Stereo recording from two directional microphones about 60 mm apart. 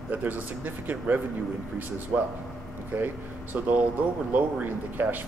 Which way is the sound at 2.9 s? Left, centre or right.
Right.